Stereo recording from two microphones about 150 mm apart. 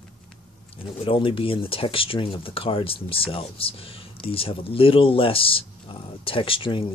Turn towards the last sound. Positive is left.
turn(degrees=35)  # may be behind; listen again after turning